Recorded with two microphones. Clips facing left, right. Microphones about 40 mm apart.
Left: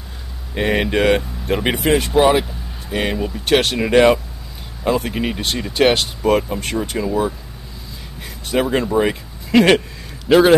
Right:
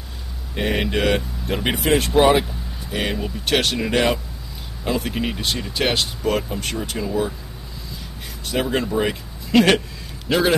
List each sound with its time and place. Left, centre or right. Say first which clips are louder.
0.6 s speech: left 4 dB; centre
3.4 s speech: left 4 dB; centre
8.5 s a man's voice: left 4 dB; centre